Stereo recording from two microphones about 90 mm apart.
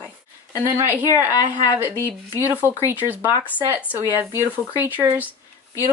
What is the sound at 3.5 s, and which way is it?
Speech, 20° left (ahead or behind).